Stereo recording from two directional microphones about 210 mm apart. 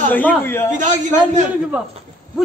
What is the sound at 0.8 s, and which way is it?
Speech, 35° right (ahead or behind).